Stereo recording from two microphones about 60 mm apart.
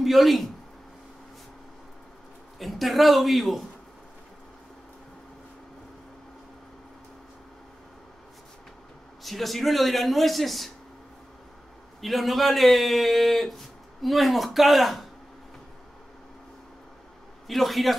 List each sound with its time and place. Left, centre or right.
0.0 s speech: centre
2.6 s a man's voice: centre
9.2 s a man's voice: centre
12.0 s a man's voice: centre
17.5 s a man's voice: centre